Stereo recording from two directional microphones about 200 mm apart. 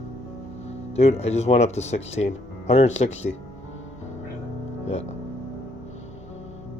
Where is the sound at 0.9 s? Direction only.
30° left (ahead or behind).